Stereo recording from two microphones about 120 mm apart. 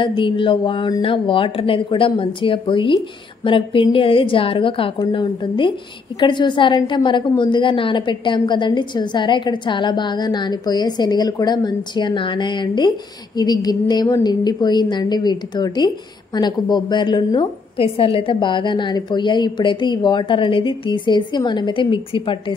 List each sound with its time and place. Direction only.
0.0 s a woman's voice: 45° left (ahead or behind)